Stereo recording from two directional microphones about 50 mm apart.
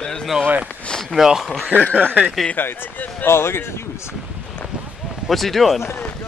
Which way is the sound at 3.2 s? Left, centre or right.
Left.